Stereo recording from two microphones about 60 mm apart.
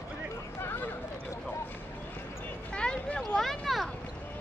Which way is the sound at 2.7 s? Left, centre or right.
Centre.